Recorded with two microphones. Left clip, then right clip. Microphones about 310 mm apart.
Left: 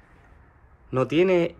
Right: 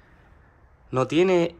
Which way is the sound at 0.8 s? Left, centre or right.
Centre.